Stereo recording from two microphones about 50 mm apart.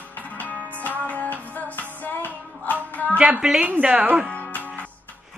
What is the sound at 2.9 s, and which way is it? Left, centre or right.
Speech, left.